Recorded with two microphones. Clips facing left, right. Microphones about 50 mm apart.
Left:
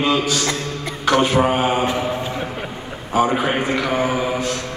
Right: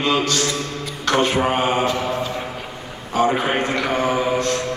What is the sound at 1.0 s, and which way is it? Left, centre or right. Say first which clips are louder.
Mantra: left 2 dB; centre.